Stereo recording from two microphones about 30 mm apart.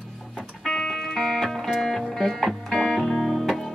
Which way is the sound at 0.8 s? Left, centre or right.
Centre.